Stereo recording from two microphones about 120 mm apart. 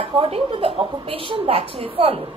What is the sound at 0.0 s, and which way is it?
A woman's voice, 50° right (ahead or behind).